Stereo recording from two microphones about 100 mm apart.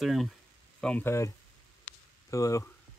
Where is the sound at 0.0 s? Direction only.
Centre (ahead or behind).